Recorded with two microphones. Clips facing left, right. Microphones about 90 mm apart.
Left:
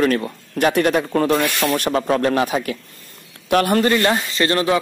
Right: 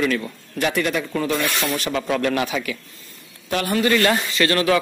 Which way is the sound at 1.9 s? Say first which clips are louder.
Left 2 dB; 35° left (ahead or behind).